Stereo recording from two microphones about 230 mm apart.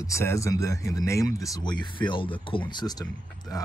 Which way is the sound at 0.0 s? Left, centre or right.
Centre.